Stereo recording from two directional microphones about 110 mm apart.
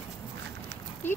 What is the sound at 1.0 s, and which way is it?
Speech, 20° left (ahead or behind).